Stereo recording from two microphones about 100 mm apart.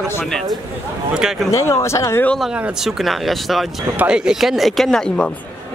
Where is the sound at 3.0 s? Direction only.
Centre (ahead or behind).